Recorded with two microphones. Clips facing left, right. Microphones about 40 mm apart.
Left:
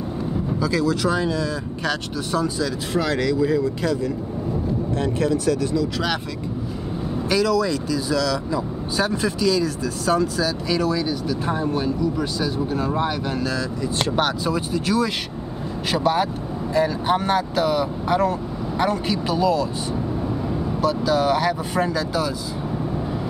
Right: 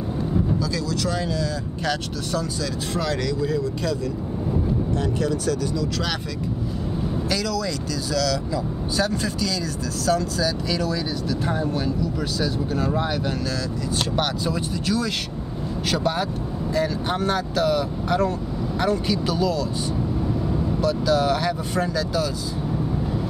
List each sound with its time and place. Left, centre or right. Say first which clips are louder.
0.6 s speech: left 5 dB; centre
4.9 s speech: left 6 dB; left
7.2 s speech: left 8 dB; centre
20.8 s speech: left 1 dB; centre